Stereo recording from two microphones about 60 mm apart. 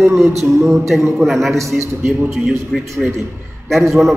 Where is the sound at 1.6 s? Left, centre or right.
Right.